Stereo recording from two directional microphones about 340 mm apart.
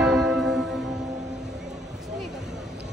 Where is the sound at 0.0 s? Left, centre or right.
Centre.